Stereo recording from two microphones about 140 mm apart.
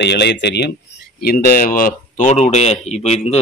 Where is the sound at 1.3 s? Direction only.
90° left.